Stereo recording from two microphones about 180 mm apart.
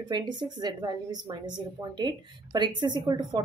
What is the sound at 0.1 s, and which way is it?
A woman's voice, 25° right (ahead or behind).